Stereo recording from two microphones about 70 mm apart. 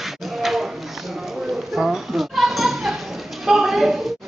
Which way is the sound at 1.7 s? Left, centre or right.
Centre.